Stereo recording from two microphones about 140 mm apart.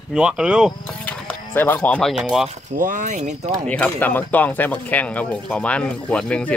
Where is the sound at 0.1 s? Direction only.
5° right (ahead or behind).